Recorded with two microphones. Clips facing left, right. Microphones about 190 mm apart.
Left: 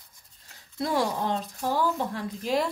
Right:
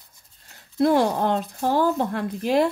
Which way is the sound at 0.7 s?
60° right (ahead or behind).